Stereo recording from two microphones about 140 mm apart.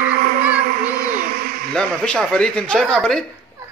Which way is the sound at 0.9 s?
75° right (ahead or behind).